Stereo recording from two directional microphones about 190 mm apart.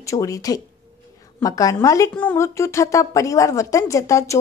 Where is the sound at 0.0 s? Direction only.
15° left (ahead or behind).